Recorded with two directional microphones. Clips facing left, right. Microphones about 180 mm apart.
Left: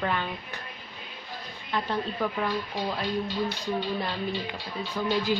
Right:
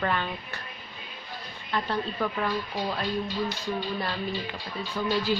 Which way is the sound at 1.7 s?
15° left (ahead or behind).